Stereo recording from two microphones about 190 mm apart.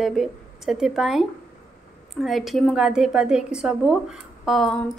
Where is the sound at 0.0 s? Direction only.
Centre (ahead or behind).